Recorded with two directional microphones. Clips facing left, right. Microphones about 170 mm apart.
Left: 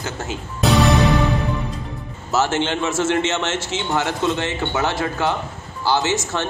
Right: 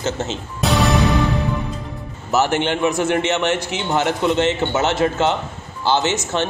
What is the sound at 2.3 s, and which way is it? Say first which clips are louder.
A man's voice: right 2 dB; 15° right (ahead or behind).